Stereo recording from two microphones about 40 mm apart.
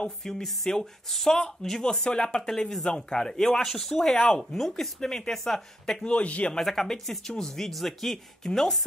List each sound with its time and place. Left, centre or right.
0.2 s a woman's voice: centre
4.6 s a woman's voice: centre
6.0 s speech: left
6.6 s a woman's voice: centre